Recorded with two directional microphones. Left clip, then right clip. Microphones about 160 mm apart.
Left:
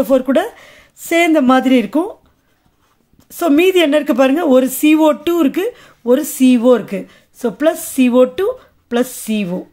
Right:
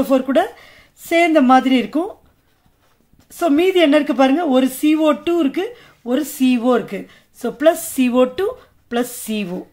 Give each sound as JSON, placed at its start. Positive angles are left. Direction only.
{"t": 0.0, "sound": "a woman's voice", "side_deg": 30}
{"t": 3.3, "sound": "a woman's voice", "side_deg": 30}